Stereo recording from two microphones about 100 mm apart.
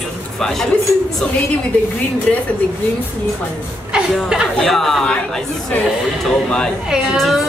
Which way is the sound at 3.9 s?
5° right (ahead or behind).